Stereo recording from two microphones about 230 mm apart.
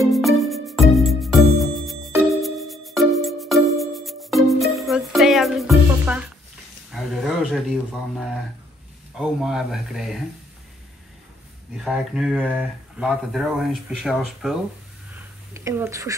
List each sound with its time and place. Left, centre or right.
0.0 s music: centre
6.9 s speech: centre
11.7 s speech: centre